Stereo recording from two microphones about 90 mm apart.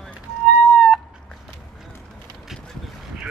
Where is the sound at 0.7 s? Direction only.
5° right (ahead or behind).